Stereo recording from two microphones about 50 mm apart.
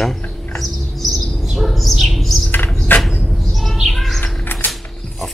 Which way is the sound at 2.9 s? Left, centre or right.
Left.